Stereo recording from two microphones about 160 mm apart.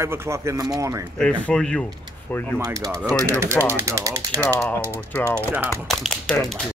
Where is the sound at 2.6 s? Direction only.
20° right (ahead or behind).